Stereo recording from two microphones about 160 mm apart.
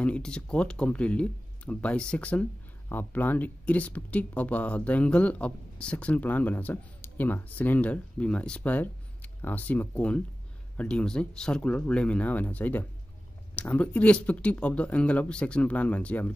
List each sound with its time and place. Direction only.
0.0 s speech: 5° left (ahead or behind)